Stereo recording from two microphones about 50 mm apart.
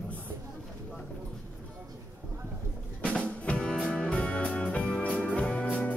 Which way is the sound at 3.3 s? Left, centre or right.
Left.